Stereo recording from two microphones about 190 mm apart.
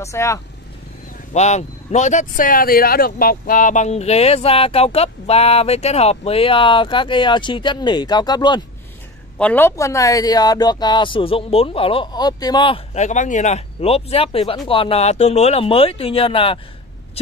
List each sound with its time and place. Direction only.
0.0 s speech: 15° left (ahead or behind)
1.3 s speech: 35° left (ahead or behind)
9.4 s speech: 10° left (ahead or behind); by 16.5 s 30° left (ahead or behind)